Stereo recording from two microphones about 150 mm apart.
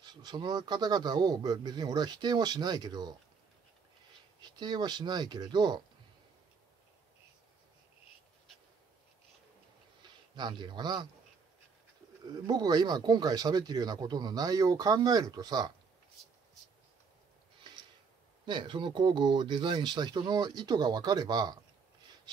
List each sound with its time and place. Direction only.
0.0 s speech: 25° right (ahead or behind)
4.4 s speech: 30° right (ahead or behind)
10.3 s speech: 30° right (ahead or behind)
12.3 s speech: 25° right (ahead or behind)
18.4 s speech: 30° right (ahead or behind)